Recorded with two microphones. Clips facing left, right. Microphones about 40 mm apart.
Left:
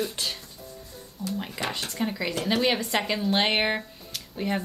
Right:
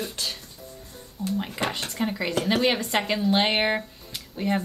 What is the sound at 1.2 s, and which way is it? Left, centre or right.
Speech, right.